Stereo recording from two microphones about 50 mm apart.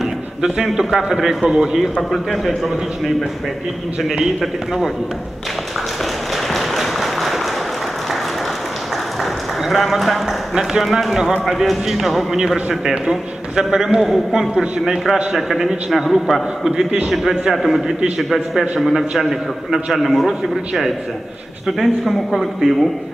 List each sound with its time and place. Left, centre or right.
1.0 s a man's voice: centre
2.0 s a man's voice: centre
4.2 s a man's voice: centre
6.3 s applause: centre
9.2 s run: centre
10.5 s a man's voice: centre
14.5 s a man's voice: centre
15.3 s a man's voice: centre
16.7 s a man's voice: right
17.1 s a man's voice: centre